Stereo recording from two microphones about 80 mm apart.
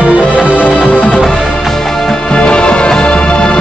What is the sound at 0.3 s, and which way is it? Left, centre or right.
Music, centre.